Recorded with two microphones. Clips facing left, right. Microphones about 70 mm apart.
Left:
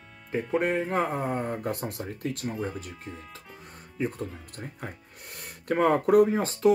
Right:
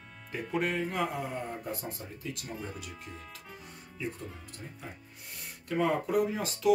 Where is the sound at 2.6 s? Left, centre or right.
Left.